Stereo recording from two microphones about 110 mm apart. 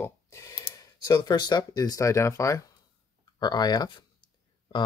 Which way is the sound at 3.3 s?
40° left (ahead or behind).